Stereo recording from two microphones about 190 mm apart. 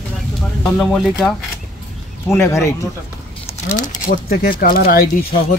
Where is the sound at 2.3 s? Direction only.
15° left (ahead or behind).